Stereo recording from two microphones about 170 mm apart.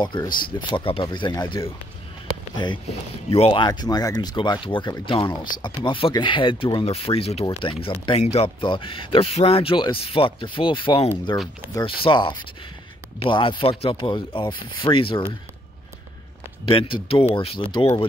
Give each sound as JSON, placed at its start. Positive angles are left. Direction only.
{"t": 0.0, "sound": "speech", "side_deg": 25}
{"t": 16.6, "sound": "speech", "side_deg": 30}